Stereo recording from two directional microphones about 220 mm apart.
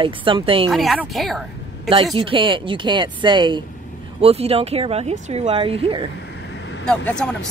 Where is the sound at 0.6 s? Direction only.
Centre (ahead or behind).